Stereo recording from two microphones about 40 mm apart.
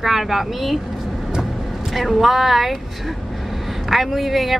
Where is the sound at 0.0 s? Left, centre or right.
Centre.